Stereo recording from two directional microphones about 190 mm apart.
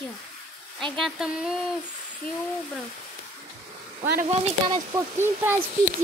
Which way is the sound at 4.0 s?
40° right (ahead or behind).